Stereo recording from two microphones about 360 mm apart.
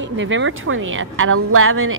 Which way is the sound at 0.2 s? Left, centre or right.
Right.